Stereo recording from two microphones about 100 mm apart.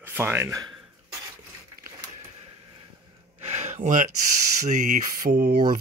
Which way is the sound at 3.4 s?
90° right.